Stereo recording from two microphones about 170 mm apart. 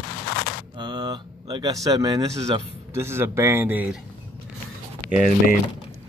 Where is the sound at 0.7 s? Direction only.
25° right (ahead or behind); by 4.0 s 10° right (ahead or behind).